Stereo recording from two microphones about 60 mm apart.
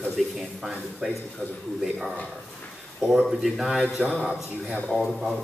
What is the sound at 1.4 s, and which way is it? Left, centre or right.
Speech, left.